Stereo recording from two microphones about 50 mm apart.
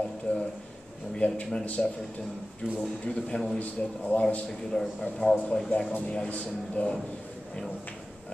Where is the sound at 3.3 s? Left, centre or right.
Centre.